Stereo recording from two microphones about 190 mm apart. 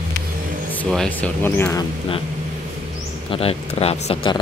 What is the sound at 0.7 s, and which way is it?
Speech, 5° left (ahead or behind).